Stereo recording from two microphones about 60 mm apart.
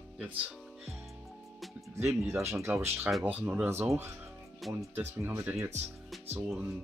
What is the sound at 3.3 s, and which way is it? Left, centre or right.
Speech, right.